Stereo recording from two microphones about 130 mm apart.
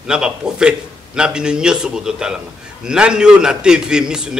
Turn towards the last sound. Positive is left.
turn(degrees=-5)  # may be behind; listen again after turning